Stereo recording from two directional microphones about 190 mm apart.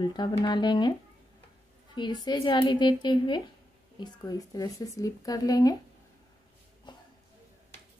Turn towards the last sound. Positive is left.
turn(degrees=25)  # may be behind; listen again after turning